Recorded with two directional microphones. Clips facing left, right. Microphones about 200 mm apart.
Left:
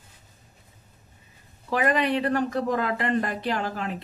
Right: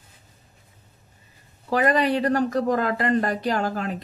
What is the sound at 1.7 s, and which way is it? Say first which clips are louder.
Speech: right 3 dB; 40° right (ahead or behind).